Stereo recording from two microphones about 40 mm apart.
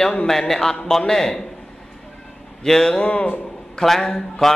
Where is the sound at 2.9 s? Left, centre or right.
Left.